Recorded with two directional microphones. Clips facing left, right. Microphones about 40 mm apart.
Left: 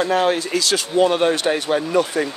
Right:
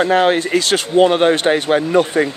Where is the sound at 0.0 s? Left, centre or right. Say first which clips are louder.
Right 4 dB; right.